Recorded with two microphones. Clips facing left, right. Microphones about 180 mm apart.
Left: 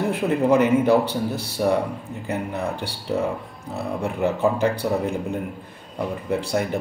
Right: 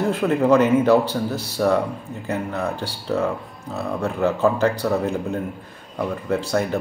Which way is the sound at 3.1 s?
15° left (ahead or behind).